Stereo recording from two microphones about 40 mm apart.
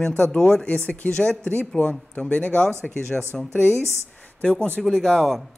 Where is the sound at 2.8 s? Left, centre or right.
Centre.